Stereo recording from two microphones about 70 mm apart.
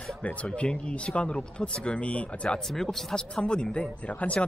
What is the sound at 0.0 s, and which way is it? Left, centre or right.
Speech, centre.